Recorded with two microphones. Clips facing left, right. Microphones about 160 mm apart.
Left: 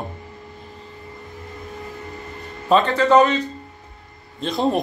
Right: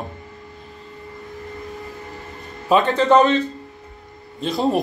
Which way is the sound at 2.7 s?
20° right (ahead or behind).